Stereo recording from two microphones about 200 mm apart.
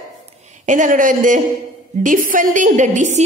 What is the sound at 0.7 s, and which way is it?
A woman's voice, 40° right (ahead or behind).